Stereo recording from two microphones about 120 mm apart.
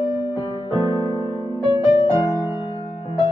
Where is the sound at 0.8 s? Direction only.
30° right (ahead or behind).